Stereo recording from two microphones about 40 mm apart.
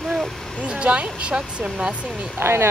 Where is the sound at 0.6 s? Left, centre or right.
Right.